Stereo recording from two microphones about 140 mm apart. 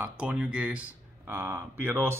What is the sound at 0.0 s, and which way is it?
Speech, 10° right (ahead or behind).